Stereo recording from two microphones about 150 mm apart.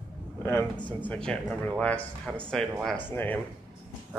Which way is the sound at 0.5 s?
15° left (ahead or behind).